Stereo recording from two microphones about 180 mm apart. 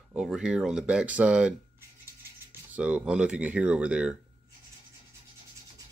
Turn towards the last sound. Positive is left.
turn(degrees=-5)  # may be behind; listen again after turning